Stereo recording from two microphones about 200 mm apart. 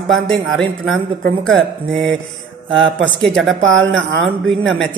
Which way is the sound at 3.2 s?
Centre (ahead or behind).